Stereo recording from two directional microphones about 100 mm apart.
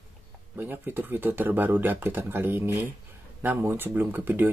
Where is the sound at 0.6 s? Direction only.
20° right (ahead or behind).